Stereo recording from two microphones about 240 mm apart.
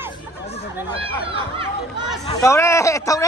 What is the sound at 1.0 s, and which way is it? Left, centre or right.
Speech, right.